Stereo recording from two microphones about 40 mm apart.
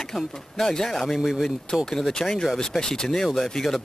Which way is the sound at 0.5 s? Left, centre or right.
Centre.